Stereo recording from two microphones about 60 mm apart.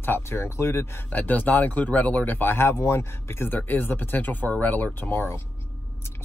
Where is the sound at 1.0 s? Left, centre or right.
Left.